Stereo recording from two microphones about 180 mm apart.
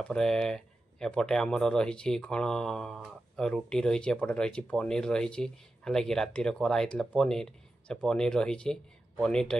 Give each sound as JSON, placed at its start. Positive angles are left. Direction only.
{"t": 0.0, "sound": "speech", "side_deg": 5}